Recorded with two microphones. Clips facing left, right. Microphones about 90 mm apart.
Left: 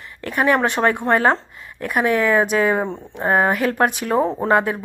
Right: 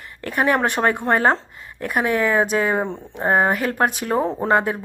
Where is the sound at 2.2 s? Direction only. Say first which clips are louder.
Left 1 dB; 35° right (ahead or behind).